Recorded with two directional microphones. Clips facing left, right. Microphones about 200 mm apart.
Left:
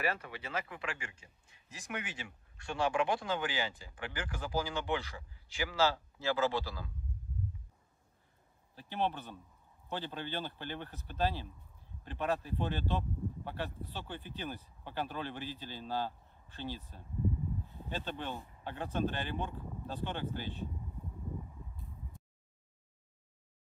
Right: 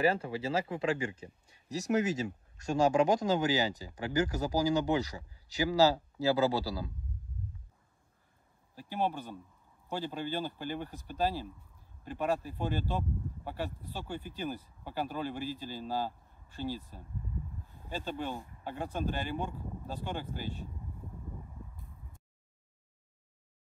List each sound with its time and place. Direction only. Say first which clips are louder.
0.0 s speech: right 8 dB; 30° right (ahead or behind)
8.7 s speech: right 2 dB; 10° right (ahead or behind)